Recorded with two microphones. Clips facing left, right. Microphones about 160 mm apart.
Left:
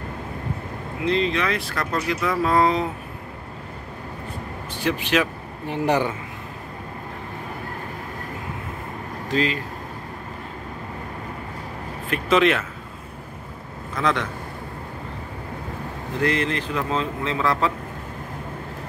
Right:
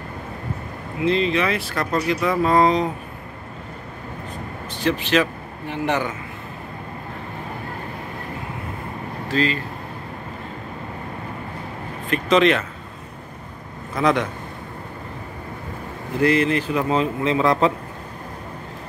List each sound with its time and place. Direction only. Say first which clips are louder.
1.0 s speech: right 2 dB; centre (ahead or behind)
4.7 s speech: right 2 dB; 10° left (ahead or behind)
5.7 s a man's voice: left 2 dB; 35° left (ahead or behind)
9.3 s speech: right 1 dB; 15° left (ahead or behind)
12.1 s speech: right 2 dB; 5° left (ahead or behind)
13.9 s speech: right 4 dB; 10° right (ahead or behind)
16.2 s speech: right 5 dB; 5° right (ahead or behind); by 17.7 s 20° right (ahead or behind)